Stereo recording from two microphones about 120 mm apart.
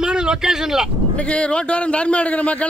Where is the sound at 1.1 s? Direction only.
10° left (ahead or behind).